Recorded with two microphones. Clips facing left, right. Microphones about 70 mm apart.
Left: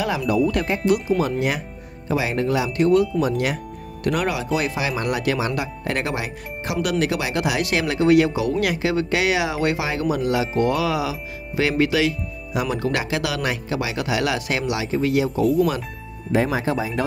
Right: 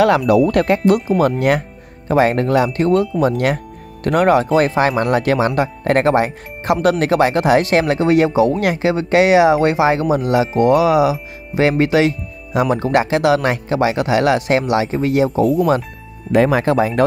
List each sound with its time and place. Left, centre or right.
0.0 s speech: right
2.0 s speech: right
16.3 s speech: right